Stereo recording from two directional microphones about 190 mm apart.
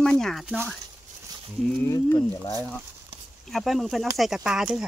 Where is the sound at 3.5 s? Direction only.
Centre (ahead or behind).